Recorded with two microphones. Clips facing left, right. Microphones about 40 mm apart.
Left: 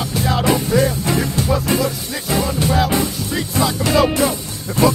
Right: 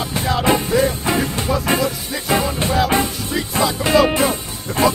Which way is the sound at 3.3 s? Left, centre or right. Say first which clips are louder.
Even; centre.